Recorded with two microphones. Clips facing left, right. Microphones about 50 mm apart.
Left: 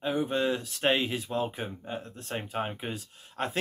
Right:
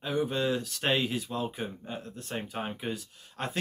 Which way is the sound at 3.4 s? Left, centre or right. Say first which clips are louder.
Left 3 dB; left.